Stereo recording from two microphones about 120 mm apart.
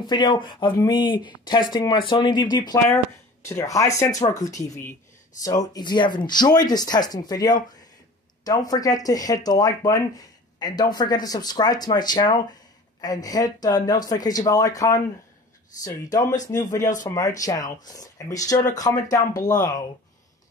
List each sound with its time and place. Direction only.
0.0 s speech: 35° left (ahead or behind)
3.4 s speech: 25° left (ahead or behind)
4.1 s speech: 75° left (ahead or behind)
4.4 s speech: 30° left (ahead or behind)